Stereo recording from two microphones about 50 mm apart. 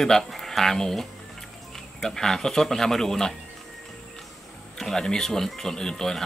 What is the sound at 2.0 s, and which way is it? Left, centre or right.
Speech, centre.